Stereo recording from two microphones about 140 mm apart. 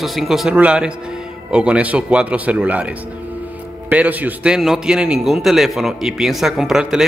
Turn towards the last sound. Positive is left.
turn(degrees=-5)  # may be behind; listen again after turning